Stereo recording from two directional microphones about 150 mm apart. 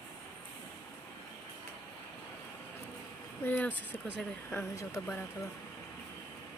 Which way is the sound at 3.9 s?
10° right (ahead or behind).